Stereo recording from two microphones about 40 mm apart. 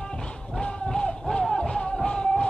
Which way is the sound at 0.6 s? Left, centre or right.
Left.